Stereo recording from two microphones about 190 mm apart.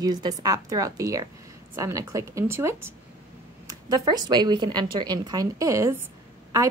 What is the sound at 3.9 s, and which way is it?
A woman's voice, 20° right (ahead or behind).